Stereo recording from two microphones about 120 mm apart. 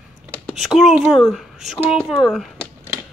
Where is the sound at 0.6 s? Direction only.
Centre (ahead or behind).